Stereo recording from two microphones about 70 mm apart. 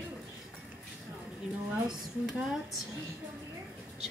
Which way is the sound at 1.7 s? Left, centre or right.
Centre.